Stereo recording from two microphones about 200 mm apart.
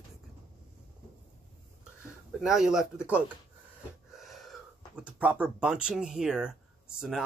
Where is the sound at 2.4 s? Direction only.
Centre (ahead or behind).